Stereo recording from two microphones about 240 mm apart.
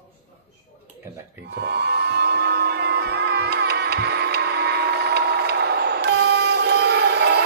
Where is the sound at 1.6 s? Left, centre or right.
Right.